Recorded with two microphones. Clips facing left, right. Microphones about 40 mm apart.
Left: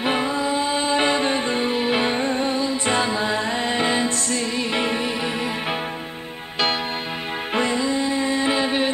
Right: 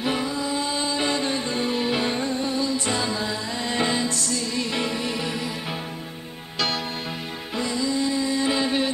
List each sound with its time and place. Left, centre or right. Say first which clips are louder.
0.0 s music: left 4 dB; left
3.7 s music: even; left
7.5 s music: left 3 dB; left